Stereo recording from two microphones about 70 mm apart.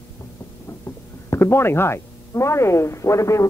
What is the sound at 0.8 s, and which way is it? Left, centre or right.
A man's voice, left.